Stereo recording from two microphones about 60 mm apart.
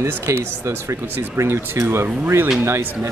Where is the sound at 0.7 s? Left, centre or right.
Right.